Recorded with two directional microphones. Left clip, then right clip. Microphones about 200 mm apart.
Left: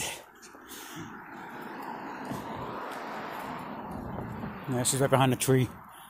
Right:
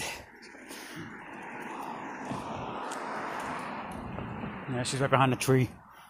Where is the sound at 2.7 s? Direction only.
40° right (ahead or behind).